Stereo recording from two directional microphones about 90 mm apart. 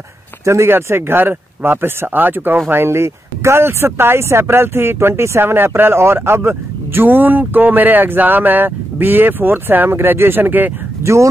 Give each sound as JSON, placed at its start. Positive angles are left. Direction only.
{"t": 0.5, "sound": "speech", "side_deg": -30}
{"t": 11.0, "sound": "speech", "side_deg": -35}